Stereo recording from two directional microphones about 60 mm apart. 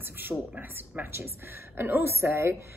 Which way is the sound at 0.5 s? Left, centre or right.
Right.